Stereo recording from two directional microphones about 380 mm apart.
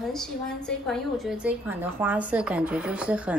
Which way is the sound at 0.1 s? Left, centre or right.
Centre.